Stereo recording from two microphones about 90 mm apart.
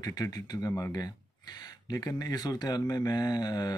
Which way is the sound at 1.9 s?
45° left (ahead or behind).